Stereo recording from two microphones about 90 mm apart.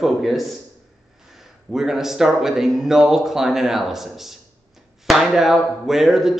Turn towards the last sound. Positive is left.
turn(degrees=-5)  # may be behind; listen again after turning